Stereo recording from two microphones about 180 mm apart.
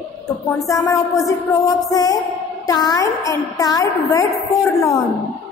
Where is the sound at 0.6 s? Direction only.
15° left (ahead or behind).